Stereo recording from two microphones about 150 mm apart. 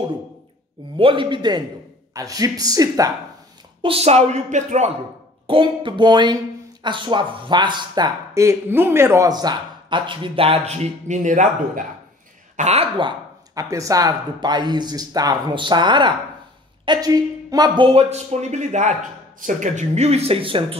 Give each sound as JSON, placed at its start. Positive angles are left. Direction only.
{"t": 0.9, "sound": "speech", "side_deg": -35}
{"t": 3.8, "sound": "speech", "side_deg": -40}
{"t": 5.5, "sound": "speech", "side_deg": -35}
{"t": 12.5, "sound": "speech", "side_deg": -45}
{"t": 13.6, "sound": "speech", "side_deg": -20}